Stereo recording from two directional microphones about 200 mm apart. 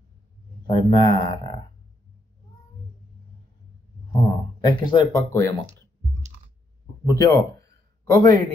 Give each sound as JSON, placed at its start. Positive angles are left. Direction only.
{"t": 0.7, "sound": "speech", "side_deg": 25}
{"t": 4.6, "sound": "speech", "side_deg": 20}
{"t": 7.1, "sound": "a man's voice", "side_deg": 15}